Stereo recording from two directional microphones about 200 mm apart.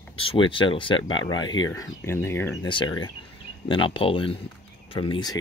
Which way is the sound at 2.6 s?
20° left (ahead or behind).